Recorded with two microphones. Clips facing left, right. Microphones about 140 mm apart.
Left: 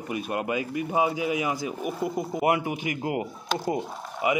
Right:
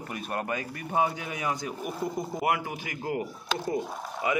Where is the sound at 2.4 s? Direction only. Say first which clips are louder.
Left 5 dB; 20° left (ahead or behind).